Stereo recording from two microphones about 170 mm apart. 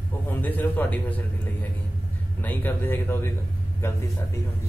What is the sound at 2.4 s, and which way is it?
Speech, 10° left (ahead or behind).